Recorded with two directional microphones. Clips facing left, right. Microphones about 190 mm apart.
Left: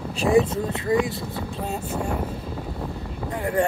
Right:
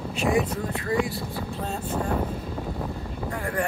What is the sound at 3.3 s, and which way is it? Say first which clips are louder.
Speech: left 6 dB; 20° left (ahead or behind).